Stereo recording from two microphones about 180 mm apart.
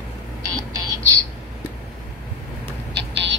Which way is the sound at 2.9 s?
75° right (ahead or behind).